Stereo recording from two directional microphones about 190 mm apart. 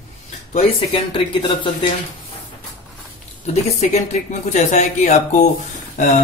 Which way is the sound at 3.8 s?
40° left (ahead or behind).